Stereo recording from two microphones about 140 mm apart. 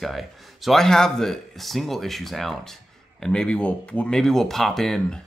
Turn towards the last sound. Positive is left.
turn(degrees=0)  # may be behind; listen again after turning